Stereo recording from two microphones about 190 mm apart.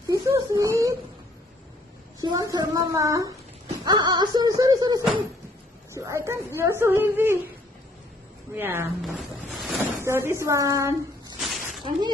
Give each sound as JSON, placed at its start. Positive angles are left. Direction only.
{"t": 0.1, "sound": "whimper", "side_deg": -20}
{"t": 2.1, "sound": "a woman's voice", "side_deg": -20}
{"t": 8.5, "sound": "speech", "side_deg": -10}
{"t": 9.0, "sound": "a sound", "side_deg": 0}
{"t": 9.9, "sound": "speech", "side_deg": -15}
{"t": 11.3, "sound": "a sound", "side_deg": 0}